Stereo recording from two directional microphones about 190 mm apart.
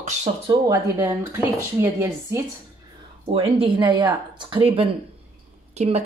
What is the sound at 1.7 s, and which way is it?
Speech, 15° right (ahead or behind).